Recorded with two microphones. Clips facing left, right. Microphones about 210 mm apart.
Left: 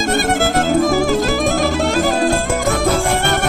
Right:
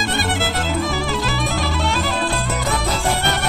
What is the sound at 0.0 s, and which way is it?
Music, 45° left (ahead or behind).